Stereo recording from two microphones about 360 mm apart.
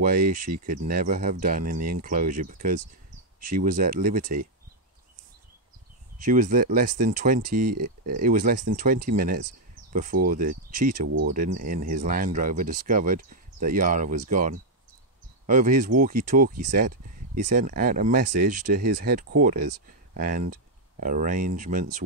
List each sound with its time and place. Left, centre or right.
0.0 s speech: right
6.1 s speech: right